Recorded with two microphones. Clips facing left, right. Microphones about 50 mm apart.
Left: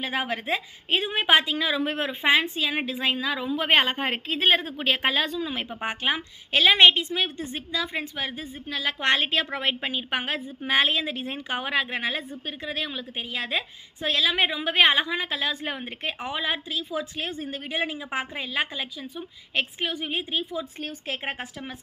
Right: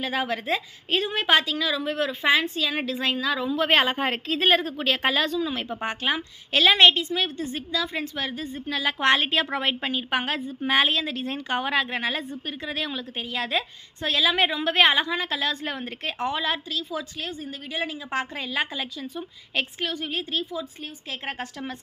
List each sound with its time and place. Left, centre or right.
0.0 s a woman's voice: centre
1.5 s a woman's voice: left
2.2 s a woman's voice: centre
8.6 s a woman's voice: centre
11.0 s a woman's voice: centre; by 17.9 s left
18.1 s a woman's voice: centre
19.8 s a woman's voice: left
21.4 s a woman's voice: centre